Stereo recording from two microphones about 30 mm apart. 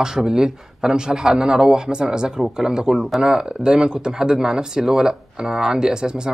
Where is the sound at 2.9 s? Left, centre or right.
Centre.